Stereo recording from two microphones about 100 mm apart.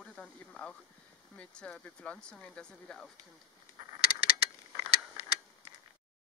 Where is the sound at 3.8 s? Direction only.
50° right (ahead or behind).